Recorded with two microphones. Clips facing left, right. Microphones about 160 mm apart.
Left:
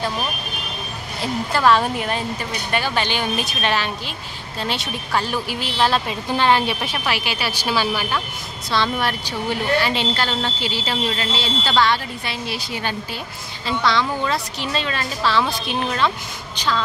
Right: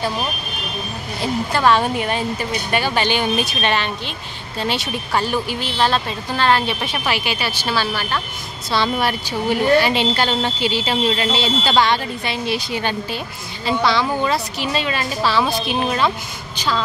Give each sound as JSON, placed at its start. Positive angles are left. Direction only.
{"t": 1.2, "sound": "speech", "side_deg": 0}
{"t": 8.6, "sound": "a woman's voice", "side_deg": -10}
{"t": 13.7, "sound": "a woman's voice", "side_deg": -10}